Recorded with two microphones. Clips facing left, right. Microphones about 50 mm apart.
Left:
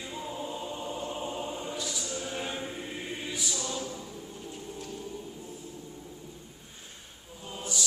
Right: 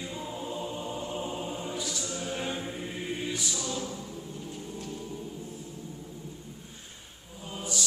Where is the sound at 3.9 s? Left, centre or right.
Centre.